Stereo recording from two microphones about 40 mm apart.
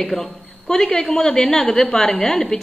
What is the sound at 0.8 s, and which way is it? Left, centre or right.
A woman's voice, centre.